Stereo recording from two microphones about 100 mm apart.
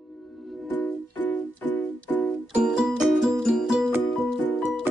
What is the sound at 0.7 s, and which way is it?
Music, 20° left (ahead or behind).